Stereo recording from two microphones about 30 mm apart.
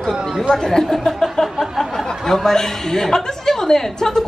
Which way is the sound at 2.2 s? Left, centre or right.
Centre.